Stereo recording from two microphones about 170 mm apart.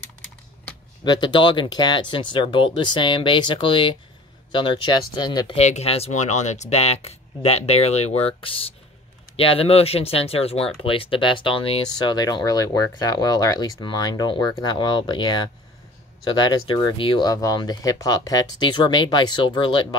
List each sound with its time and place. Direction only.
1.0 s speech: 25° left (ahead or behind)
5.6 s speech: 40° left (ahead or behind)